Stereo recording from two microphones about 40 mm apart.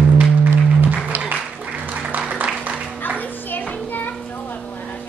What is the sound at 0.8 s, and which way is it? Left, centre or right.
Music, right.